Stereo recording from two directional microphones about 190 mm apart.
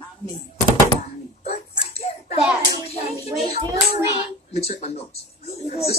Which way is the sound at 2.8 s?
35° left (ahead or behind).